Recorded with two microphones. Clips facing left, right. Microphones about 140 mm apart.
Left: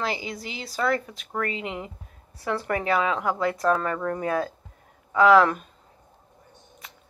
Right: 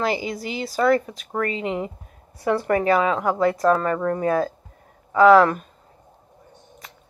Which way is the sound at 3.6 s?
5° right (ahead or behind).